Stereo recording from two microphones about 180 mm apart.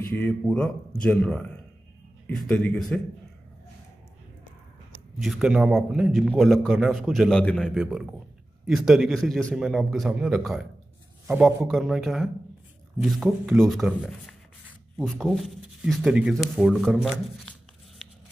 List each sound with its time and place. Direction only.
0.1 s speech: 5° left (ahead or behind)
5.2 s speech: centre (ahead or behind)